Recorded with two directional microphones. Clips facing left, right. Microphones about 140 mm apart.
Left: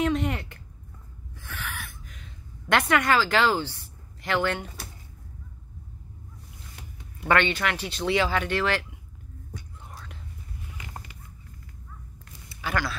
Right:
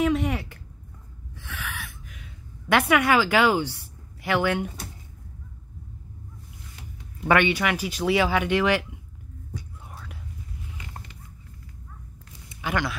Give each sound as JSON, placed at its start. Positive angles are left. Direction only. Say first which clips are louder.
{"t": 0.0, "sound": "speech", "louder": "right 2 dB", "side_deg": 0}
{"t": 1.4, "sound": "gasp", "louder": "right 1 dB", "side_deg": 0}
{"t": 7.2, "sound": "speech", "louder": "right 2 dB", "side_deg": -10}
{"t": 9.8, "sound": "whispering", "louder": "right 1 dB", "side_deg": -5}
{"t": 12.4, "sound": "a sound", "louder": "right 2 dB", "side_deg": -15}